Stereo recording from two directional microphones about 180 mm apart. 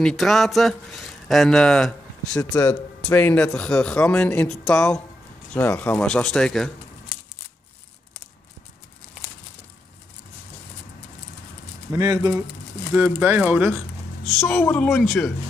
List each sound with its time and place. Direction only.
0.0 s speech: centre (ahead or behind)
11.9 s speech: 20° right (ahead or behind); by 15.3 s centre (ahead or behind)